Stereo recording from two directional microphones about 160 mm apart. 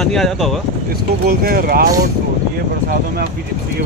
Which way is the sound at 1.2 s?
65° right (ahead or behind).